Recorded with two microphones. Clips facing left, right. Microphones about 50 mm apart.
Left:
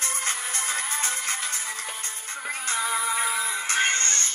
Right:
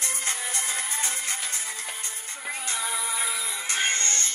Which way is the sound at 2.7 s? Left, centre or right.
Left.